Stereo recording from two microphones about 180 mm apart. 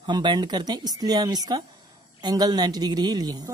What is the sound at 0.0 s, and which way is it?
A woman's voice, 25° right (ahead or behind).